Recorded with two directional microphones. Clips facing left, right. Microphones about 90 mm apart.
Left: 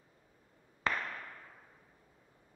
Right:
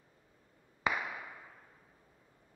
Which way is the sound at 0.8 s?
10° right (ahead or behind).